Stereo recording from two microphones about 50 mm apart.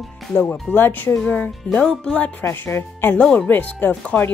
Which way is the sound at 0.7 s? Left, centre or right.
Left.